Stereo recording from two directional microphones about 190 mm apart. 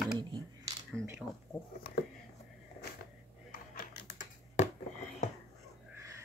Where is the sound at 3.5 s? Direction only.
45° left (ahead or behind).